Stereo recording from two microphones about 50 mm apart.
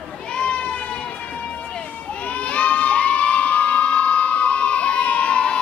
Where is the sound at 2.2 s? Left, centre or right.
Left.